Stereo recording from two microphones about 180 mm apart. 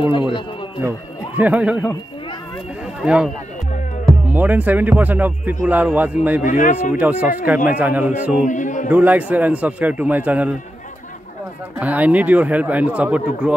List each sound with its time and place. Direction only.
0.8 s a man's voice: 10° right (ahead or behind)
3.0 s speech: 5° right (ahead or behind)
4.3 s speech: 10° right (ahead or behind)
6.4 s speech: 45° left (ahead or behind)
7.0 s speech: 10° right (ahead or behind)
8.5 s a sound: 45° left (ahead or behind)
8.9 s speech: 10° right (ahead or behind)
11.8 s speech: 10° right (ahead or behind)